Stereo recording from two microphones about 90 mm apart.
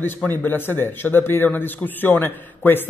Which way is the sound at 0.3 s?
20° left (ahead or behind).